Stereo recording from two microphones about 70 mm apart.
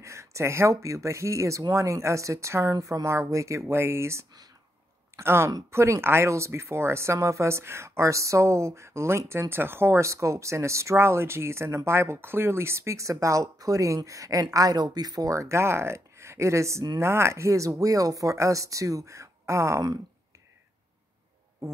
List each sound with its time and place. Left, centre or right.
0.0 s a woman's voice: right
21.6 s music: right